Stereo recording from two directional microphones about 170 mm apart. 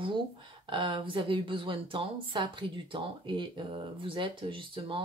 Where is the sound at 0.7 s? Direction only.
30° right (ahead or behind).